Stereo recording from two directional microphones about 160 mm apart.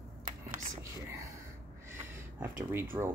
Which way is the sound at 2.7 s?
15° right (ahead or behind).